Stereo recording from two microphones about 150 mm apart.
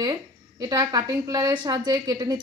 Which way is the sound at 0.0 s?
25° right (ahead or behind).